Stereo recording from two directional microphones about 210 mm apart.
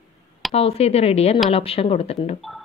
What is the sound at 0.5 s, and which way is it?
Speech, 30° left (ahead or behind).